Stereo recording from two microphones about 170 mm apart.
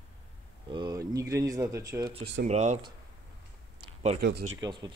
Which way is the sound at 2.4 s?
40° right (ahead or behind).